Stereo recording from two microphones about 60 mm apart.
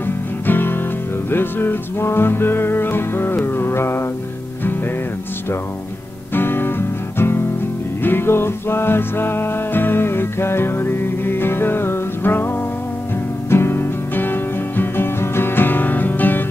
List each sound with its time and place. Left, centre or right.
0.0 s music: left
6.3 s music: left
13.5 s music: left